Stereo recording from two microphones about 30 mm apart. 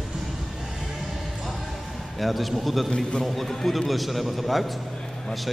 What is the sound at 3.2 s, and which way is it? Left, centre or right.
A man's voice, centre.